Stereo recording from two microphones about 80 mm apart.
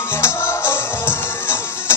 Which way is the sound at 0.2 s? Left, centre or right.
Left.